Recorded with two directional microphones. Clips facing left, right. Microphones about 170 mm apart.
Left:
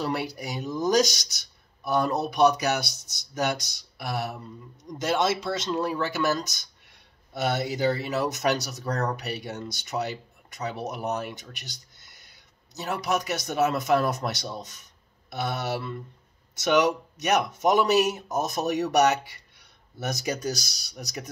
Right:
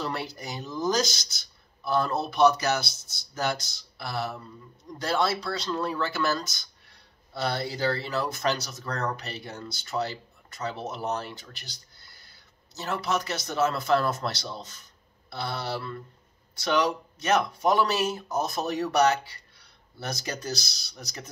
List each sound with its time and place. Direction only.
0.0 s speech: 15° left (ahead or behind)